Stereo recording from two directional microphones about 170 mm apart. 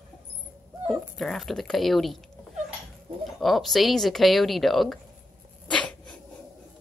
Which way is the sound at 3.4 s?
Centre (ahead or behind).